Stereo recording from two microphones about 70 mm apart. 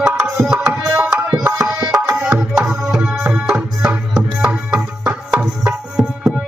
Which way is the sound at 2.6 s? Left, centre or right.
Centre.